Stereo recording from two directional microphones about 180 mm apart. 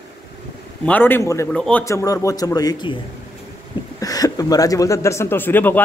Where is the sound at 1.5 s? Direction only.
5° left (ahead or behind).